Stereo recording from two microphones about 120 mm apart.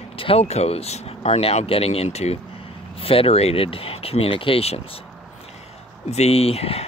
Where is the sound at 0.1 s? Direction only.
55° left (ahead or behind).